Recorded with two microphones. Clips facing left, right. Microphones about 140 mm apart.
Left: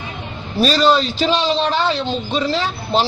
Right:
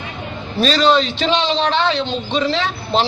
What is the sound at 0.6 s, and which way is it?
A man's voice, 5° left (ahead or behind).